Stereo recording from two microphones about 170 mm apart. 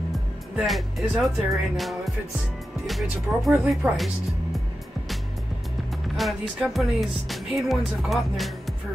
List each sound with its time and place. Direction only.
0.6 s speech: centre (ahead or behind)
6.1 s speech: centre (ahead or behind)